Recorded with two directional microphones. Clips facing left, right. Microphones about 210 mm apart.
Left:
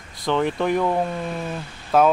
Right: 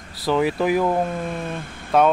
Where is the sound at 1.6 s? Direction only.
55° right (ahead or behind).